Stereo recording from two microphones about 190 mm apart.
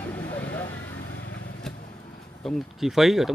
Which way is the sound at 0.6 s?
70° left (ahead or behind).